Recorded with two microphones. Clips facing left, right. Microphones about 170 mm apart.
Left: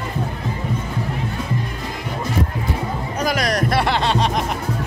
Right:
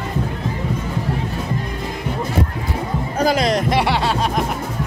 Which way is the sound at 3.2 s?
25° right (ahead or behind).